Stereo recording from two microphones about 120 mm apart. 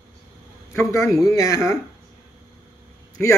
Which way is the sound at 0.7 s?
25° left (ahead or behind).